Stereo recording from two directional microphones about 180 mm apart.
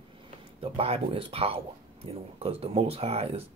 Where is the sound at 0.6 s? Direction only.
30° right (ahead or behind).